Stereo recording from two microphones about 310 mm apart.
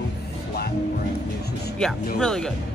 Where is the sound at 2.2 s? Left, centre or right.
Centre.